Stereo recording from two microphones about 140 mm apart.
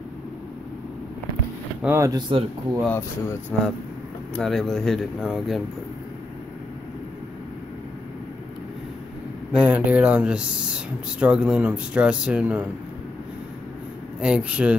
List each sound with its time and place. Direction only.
1.8 s speech: 15° right (ahead or behind)
2.9 s speech: 15° left (ahead or behind)
4.4 s speech: 5° left (ahead or behind)
9.5 s speech: 10° right (ahead or behind)
14.2 s speech: 10° right (ahead or behind)